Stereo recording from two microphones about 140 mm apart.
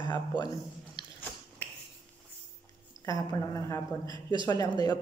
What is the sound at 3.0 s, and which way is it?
A woman's voice, 25° left (ahead or behind).